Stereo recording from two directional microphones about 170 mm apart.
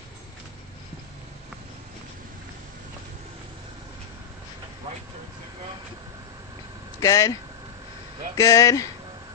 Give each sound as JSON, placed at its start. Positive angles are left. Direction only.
{"t": 7.0, "sound": "speech", "side_deg": 20}
{"t": 8.4, "sound": "speech", "side_deg": 20}